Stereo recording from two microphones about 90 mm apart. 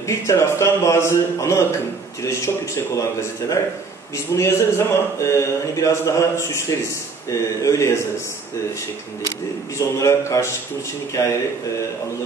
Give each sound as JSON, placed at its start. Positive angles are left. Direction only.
{"t": 0.1, "sound": "speech", "side_deg": 35}
{"t": 9.8, "sound": "speech", "side_deg": 35}